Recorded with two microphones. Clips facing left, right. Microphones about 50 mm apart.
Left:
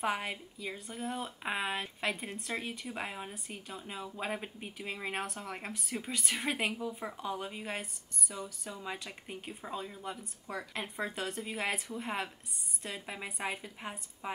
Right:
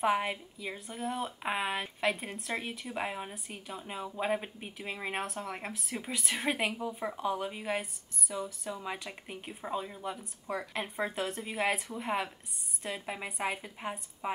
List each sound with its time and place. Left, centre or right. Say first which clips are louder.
0.0 s speech: right 5 dB; centre
14.2 s a woman's voice: right 4 dB; centre